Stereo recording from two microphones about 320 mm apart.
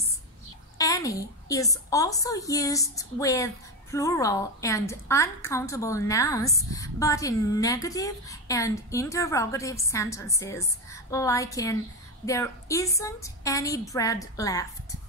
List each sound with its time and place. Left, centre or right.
0.7 s a woman's voice: centre